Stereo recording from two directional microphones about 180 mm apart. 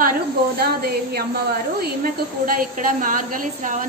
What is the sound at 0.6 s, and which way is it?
A woman's voice, 60° right (ahead or behind).